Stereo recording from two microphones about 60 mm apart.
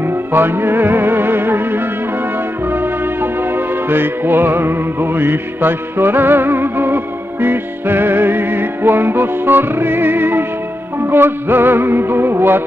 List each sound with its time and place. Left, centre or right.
0.0 s music: right